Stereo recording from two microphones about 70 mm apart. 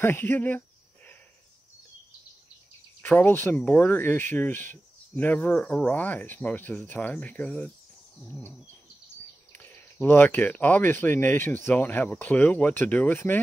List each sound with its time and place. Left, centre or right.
0.0 s a sound: left
3.0 s speech: left
9.5 s speech: left